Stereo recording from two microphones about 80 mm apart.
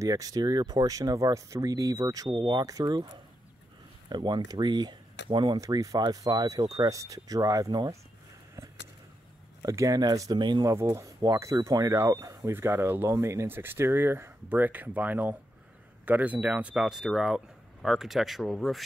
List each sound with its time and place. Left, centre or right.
0.0 s speech: right
5.6 s speech: right
9.6 s speech: right
10.3 s speech: right
10.6 s speech: right
16.7 s speech: centre